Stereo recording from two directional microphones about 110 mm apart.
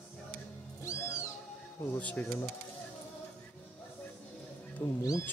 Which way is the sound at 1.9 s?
15° left (ahead or behind).